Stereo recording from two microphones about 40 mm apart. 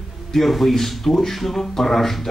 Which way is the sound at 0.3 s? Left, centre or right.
Centre.